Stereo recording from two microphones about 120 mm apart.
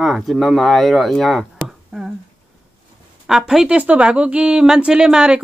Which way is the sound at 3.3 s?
5° right (ahead or behind).